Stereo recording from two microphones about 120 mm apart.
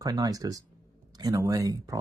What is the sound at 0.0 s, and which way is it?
Speech, 30° right (ahead or behind).